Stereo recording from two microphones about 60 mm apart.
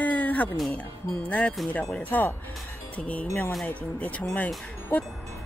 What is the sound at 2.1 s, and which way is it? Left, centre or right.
Speech, left.